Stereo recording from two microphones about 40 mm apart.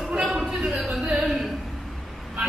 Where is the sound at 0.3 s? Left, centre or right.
Centre.